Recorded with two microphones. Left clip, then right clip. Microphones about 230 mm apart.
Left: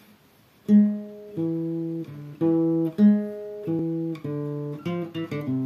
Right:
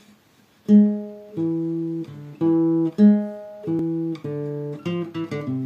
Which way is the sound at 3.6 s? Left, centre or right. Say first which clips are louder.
Right 4 dB; centre.